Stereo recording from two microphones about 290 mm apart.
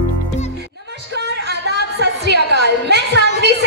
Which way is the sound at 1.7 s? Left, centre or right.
Right.